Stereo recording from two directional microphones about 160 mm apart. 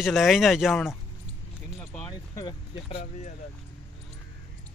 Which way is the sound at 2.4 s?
30° left (ahead or behind).